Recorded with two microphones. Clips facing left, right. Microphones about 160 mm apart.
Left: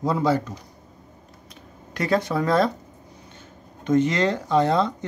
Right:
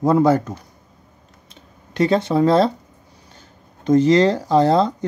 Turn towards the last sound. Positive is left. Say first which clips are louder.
# right 5 dB
turn(degrees=-35)  # may be behind; listen again after turning